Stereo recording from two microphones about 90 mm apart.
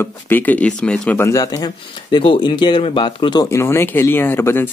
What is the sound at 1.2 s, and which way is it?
Speech, 40° left (ahead or behind).